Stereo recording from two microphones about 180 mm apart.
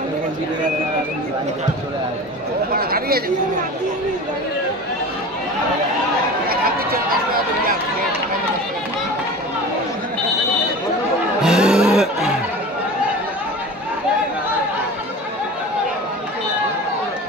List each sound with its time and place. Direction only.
2.7 s speech: 55° right (ahead or behind)
6.5 s chatter: 55° right (ahead or behind)
11.4 s music: 5° right (ahead or behind)